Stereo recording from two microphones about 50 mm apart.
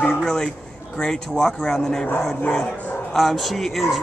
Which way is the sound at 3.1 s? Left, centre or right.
Centre.